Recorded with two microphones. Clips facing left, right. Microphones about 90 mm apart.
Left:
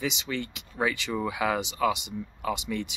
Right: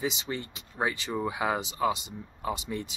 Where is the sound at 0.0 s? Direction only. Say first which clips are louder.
Left 1 dB; 35° right (ahead or behind).